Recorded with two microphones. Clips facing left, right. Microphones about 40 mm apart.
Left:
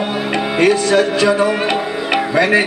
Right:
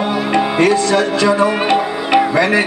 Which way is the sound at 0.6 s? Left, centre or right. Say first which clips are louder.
Left 3 dB; left.